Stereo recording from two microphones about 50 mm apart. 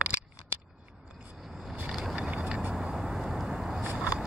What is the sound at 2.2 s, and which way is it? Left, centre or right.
Vehicle, centre.